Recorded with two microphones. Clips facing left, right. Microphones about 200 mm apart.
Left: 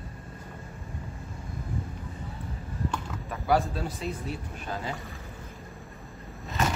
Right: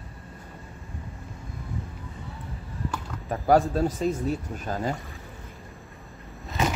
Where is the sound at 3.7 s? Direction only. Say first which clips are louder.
Right 8 dB; 45° right (ahead or behind).